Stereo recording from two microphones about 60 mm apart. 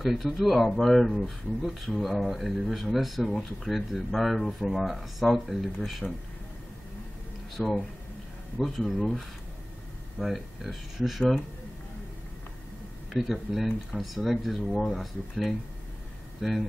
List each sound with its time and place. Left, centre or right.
0.0 s speech: centre
7.5 s speech: centre
13.1 s speech: centre